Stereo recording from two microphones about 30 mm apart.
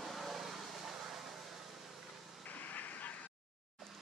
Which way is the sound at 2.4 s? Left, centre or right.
Left.